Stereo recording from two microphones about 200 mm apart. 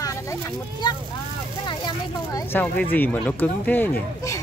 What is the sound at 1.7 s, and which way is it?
Vehicle, 25° left (ahead or behind).